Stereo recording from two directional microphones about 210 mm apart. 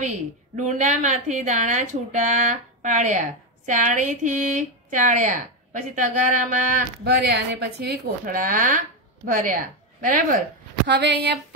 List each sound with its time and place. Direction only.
0.0 s a woman's voice: 35° right (ahead or behind)
7.1 s a woman's voice: 50° right (ahead or behind)
10.9 s speech: 55° right (ahead or behind)